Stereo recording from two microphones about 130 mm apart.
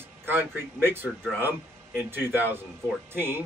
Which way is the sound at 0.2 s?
15° right (ahead or behind).